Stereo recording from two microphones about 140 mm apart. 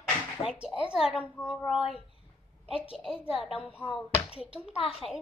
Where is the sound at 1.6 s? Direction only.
Centre (ahead or behind).